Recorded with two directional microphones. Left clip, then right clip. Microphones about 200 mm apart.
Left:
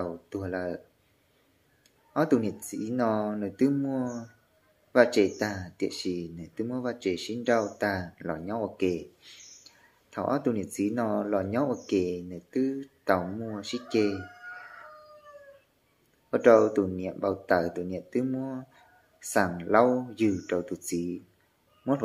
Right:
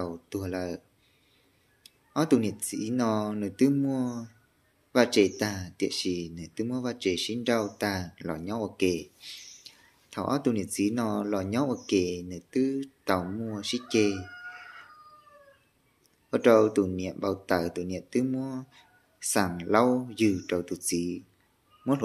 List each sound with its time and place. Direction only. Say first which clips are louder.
0.0 s a sound: even; 40° right (ahead or behind)
2.1 s speech: even; 40° right (ahead or behind)
16.3 s speech: left 1 dB; 40° right (ahead or behind)